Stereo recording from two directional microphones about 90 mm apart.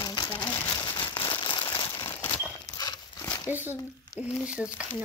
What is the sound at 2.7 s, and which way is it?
Clip-clop, 45° left (ahead or behind).